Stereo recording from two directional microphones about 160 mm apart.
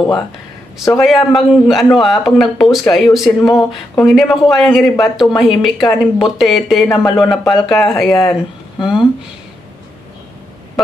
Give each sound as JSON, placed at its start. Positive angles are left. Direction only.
{"t": 0.9, "sound": "speech", "side_deg": 0}